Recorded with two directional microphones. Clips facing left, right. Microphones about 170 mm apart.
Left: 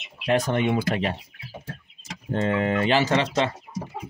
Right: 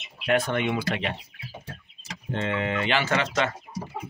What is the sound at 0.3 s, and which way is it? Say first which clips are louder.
Speech: left 2 dB; 35° left (ahead or behind).